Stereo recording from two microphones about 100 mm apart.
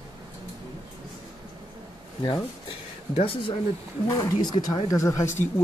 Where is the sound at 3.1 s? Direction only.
60° left (ahead or behind).